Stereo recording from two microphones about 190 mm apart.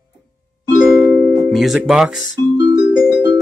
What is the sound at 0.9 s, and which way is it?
Music, centre (ahead or behind).